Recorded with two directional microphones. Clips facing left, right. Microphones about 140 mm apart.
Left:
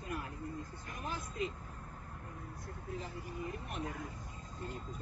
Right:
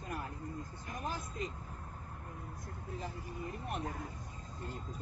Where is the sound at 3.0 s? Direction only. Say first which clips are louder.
Even; 40° right (ahead or behind).